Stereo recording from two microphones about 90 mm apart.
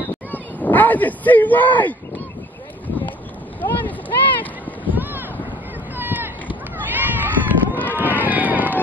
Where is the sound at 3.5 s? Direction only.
20° left (ahead or behind).